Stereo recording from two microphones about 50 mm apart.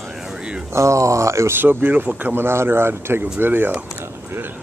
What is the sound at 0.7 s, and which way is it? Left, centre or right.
Speech, right.